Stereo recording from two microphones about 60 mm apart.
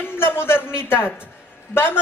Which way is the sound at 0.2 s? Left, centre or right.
Left.